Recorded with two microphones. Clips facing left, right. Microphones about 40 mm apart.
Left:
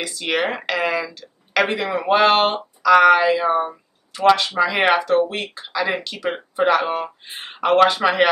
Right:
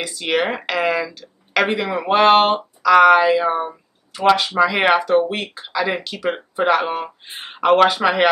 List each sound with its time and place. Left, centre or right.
0.0 s speech: centre